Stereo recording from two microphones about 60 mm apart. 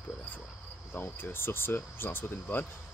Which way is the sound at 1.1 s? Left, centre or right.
Left.